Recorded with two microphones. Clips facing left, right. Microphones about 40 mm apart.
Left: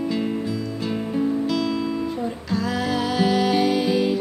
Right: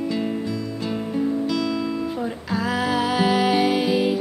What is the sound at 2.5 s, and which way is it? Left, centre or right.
Music, centre.